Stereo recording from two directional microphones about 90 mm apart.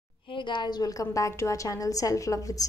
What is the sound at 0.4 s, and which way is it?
A woman's voice, 60° left (ahead or behind).